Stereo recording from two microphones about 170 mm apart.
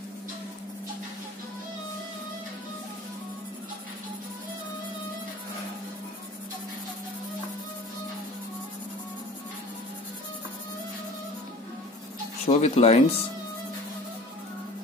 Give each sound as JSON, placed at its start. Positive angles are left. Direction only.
{"t": 12.4, "sound": "speech", "side_deg": 40}